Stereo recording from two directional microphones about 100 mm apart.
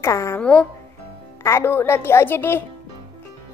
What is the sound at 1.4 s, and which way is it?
Speech, 25° left (ahead or behind).